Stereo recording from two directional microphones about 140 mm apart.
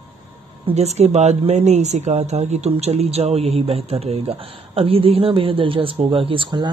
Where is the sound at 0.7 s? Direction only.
50° right (ahead or behind).